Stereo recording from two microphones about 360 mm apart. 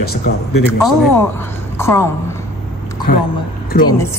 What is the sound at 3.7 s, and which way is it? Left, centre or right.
Speech, left.